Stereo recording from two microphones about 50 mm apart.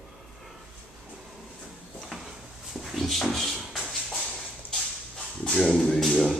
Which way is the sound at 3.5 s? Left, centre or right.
Centre.